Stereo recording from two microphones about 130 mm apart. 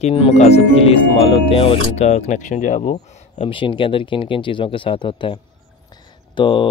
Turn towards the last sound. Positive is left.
turn(degrees=40)  # may be behind; listen again after turning